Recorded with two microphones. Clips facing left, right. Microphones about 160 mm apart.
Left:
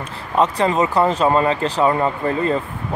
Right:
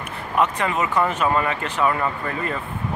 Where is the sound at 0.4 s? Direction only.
35° left (ahead or behind).